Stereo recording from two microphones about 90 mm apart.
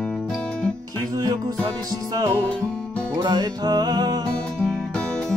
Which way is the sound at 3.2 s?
50° right (ahead or behind).